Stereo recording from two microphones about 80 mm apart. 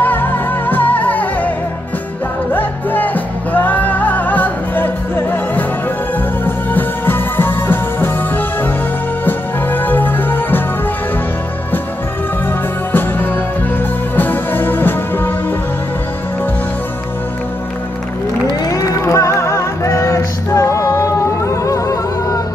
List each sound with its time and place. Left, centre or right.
0.0 s music: left
2.5 s music: left
14.1 s music: left
18.7 s music: left